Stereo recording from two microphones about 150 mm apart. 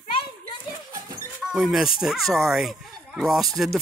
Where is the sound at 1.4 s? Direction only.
Centre (ahead or behind).